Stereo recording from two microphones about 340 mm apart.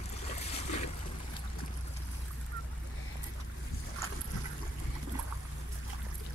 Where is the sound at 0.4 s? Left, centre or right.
Centre.